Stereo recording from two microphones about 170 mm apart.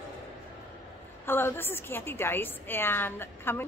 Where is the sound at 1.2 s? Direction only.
15° left (ahead or behind).